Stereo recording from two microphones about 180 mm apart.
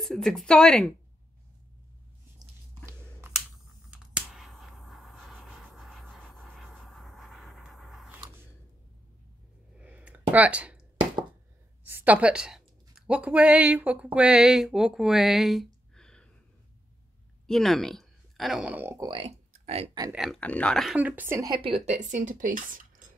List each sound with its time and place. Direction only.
0.0 s speech: centre (ahead or behind)
2.9 s scissors: 10° right (ahead or behind)
3.9 s a sound: centre (ahead or behind)
9.8 s a sound: 5° right (ahead or behind)
11.8 s speech: 10° right (ahead or behind)
17.5 s speech: centre (ahead or behind)
19.0 s speech: 30° right (ahead or behind)
20.1 s speech: centre (ahead or behind)
21.5 s a woman's voice: 30° right (ahead or behind)
22.1 s a woman's voice: 45° right (ahead or behind)